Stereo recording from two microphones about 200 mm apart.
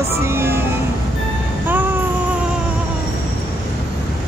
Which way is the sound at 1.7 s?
10° right (ahead or behind).